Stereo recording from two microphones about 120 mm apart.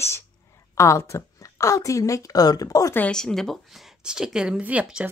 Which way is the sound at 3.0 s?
5° left (ahead or behind).